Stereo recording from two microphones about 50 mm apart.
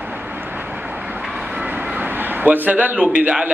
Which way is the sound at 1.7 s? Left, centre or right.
Right.